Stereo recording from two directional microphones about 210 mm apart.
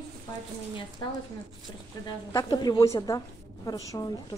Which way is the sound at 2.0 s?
20° left (ahead or behind).